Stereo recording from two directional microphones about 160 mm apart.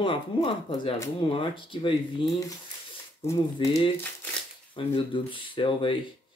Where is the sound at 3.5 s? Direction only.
30° left (ahead or behind).